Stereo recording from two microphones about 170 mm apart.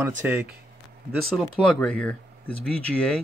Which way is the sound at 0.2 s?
10° right (ahead or behind).